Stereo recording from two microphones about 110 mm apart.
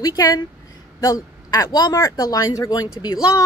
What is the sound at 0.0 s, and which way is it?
A woman's voice, 35° left (ahead or behind).